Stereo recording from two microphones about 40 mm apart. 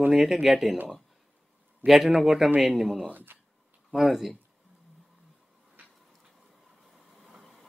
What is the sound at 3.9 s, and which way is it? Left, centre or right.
Speech, centre.